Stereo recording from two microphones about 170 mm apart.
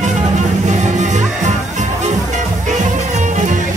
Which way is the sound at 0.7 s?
45° right (ahead or behind).